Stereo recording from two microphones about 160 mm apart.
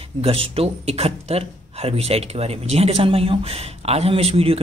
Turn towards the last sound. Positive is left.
turn(degrees=-35)  # may be behind; listen again after turning